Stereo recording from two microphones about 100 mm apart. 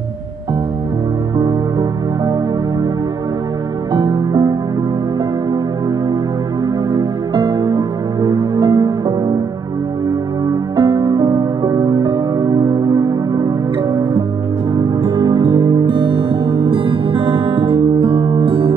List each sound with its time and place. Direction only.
1.4 s music: 40° right (ahead or behind)
3.9 s music: 45° right (ahead or behind)
7.3 s music: 45° right (ahead or behind)
10.5 s music: 40° right (ahead or behind)
14.8 s music: 45° right (ahead or behind); by 18.7 s 70° right (ahead or behind)